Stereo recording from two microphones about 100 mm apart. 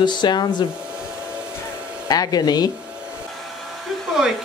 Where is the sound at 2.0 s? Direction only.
40° left (ahead or behind).